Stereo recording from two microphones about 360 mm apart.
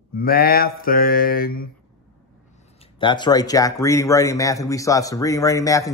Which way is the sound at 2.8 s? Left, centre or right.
Centre.